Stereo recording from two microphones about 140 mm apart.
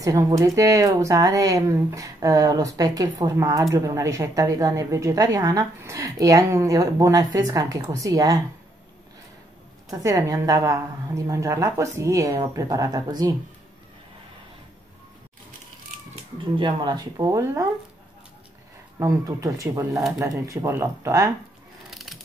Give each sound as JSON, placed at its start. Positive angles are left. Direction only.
{"t": 0.0, "sound": "speech", "side_deg": -25}
{"t": 9.8, "sound": "speech", "side_deg": -25}
{"t": 16.5, "sound": "speech", "side_deg": -35}
{"t": 18.9, "sound": "speech", "side_deg": -25}
{"t": 21.9, "sound": "wood", "side_deg": 0}